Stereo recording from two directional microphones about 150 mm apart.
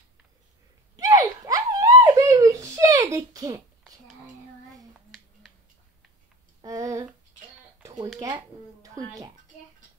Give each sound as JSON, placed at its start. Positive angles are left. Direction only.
{"t": 0.9, "sound": "giggle", "side_deg": -25}
{"t": 6.6, "sound": "a sound", "side_deg": -20}
{"t": 8.2, "sound": "a child's voice", "side_deg": -25}